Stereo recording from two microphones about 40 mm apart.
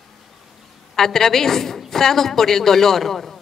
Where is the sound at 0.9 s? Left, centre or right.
Centre.